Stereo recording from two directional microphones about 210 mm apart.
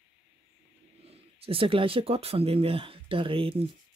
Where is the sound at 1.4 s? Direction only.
25° right (ahead or behind).